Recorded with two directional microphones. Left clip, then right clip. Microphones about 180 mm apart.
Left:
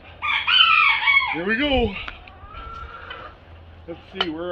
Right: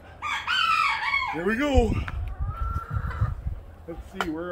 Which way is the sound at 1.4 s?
20° right (ahead or behind).